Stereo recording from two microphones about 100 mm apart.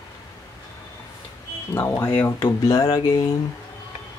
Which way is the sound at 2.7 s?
40° left (ahead or behind).